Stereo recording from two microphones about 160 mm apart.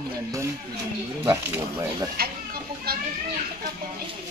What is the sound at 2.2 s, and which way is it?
Goat, 70° right (ahead or behind).